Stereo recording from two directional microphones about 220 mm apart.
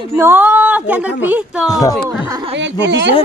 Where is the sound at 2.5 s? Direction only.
55° right (ahead or behind).